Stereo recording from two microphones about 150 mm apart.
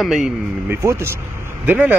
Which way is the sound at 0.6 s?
15° right (ahead or behind).